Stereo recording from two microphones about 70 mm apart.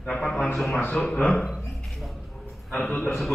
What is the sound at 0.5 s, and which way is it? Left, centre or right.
Speech, centre.